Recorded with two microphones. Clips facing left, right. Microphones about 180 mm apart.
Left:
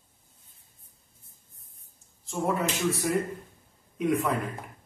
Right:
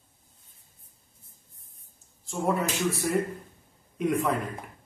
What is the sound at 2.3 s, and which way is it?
A man's voice, centre (ahead or behind).